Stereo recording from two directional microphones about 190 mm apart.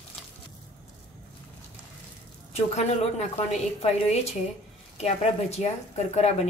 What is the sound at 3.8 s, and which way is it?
Speech, 35° left (ahead or behind).